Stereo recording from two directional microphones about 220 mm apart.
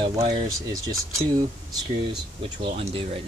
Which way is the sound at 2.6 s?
25° right (ahead or behind).